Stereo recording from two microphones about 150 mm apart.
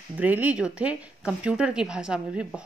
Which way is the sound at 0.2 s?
10° right (ahead or behind).